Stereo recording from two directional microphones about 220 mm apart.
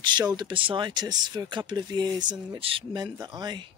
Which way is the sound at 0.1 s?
20° right (ahead or behind).